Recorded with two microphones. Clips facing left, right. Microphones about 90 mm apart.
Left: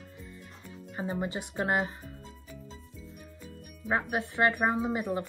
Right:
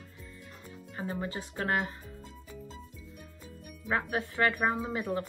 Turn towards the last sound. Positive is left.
turn(degrees=20)  # may be behind; listen again after turning